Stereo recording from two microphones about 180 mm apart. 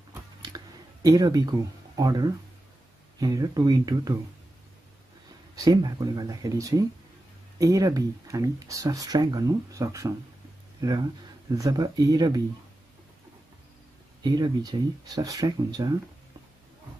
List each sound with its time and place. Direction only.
1.0 s speech: 20° right (ahead or behind)
5.6 s speech: 20° right (ahead or behind)
11.5 s speech: 20° right (ahead or behind)
14.2 s speech: 20° right (ahead or behind)